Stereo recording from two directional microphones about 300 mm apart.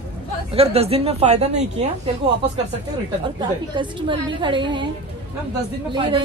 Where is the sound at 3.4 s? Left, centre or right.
Centre.